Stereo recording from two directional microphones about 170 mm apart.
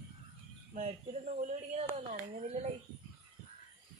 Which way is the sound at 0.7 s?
45° right (ahead or behind).